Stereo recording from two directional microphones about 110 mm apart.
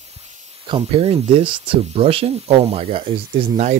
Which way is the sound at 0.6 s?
55° right (ahead or behind).